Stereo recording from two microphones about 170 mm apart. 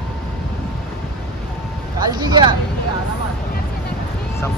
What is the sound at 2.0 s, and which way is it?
Speech, 25° right (ahead or behind).